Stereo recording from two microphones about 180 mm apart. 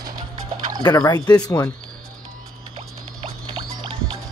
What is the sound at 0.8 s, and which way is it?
Speech, 20° left (ahead or behind).